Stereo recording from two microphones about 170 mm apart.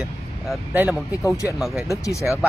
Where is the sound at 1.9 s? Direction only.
20° left (ahead or behind).